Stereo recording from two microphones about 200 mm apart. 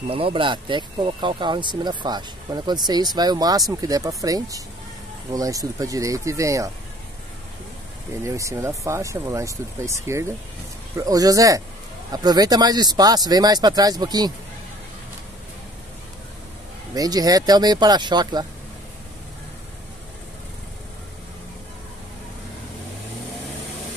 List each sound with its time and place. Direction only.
0.1 s speech: 25° right (ahead or behind)
8.2 s speech: 15° right (ahead or behind)
16.9 s speech: 20° right (ahead or behind)